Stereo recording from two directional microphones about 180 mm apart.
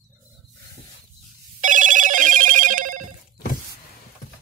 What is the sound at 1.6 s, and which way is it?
Telephone bell ringing, 45° right (ahead or behind).